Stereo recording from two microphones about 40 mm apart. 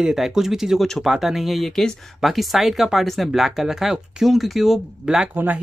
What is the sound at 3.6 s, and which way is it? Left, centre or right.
Speech, centre.